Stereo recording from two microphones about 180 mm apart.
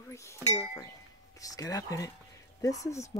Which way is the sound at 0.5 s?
20° left (ahead or behind).